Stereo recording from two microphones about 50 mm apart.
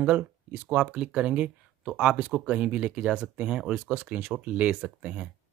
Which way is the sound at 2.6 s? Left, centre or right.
Right.